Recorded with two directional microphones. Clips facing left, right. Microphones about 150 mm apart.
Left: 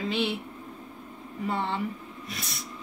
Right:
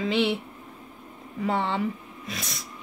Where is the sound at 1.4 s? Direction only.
90° right.